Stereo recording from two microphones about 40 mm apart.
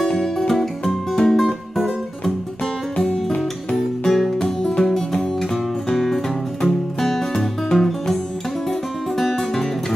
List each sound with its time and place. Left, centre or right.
0.2 s music: centre
3.0 s music: centre
4.4 s music: centre